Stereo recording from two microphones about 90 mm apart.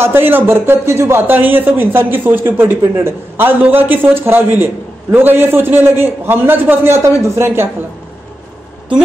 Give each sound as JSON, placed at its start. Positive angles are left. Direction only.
{"t": 0.0, "sound": "speech", "side_deg": -25}